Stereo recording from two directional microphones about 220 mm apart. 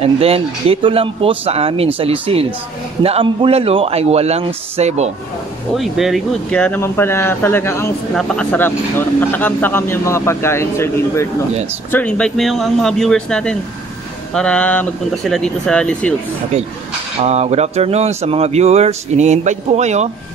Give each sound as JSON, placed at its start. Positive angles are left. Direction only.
{"t": 0.0, "sound": "speech", "side_deg": -25}
{"t": 5.8, "sound": "speech", "side_deg": 0}
{"t": 17.2, "sound": "speech", "side_deg": -30}